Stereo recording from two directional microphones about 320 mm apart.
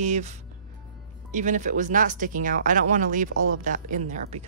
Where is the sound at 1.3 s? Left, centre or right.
Right.